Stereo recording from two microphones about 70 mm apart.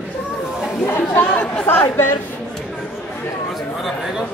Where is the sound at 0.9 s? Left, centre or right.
Left.